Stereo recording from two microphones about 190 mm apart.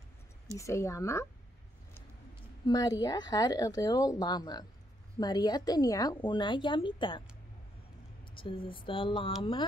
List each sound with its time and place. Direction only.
0.6 s speech: 15° left (ahead or behind)
2.6 s speech: 20° left (ahead or behind)
8.4 s speech: 25° left (ahead or behind)